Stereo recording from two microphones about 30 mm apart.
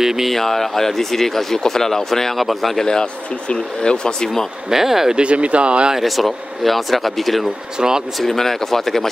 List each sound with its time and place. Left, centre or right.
0.0 s speech: centre
0.3 s speech: centre
2.3 s speech: centre
2.8 s speech: left
4.6 s speech: centre
5.1 s speech: right
5.9 s speech: centre
7.8 s speech: right
8.2 s speech: centre